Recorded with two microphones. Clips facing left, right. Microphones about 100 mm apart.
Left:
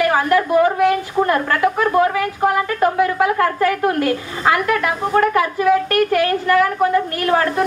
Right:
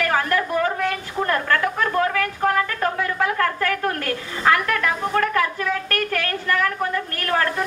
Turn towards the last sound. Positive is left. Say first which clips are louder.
# left 5 dB
turn(degrees=15)  # may be behind; listen again after turning